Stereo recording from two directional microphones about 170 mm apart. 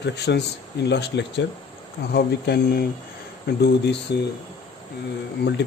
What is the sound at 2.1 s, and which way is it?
Speech, 70° left (ahead or behind).